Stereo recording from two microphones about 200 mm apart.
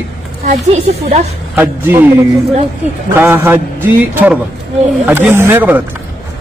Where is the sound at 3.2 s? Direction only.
10° right (ahead or behind).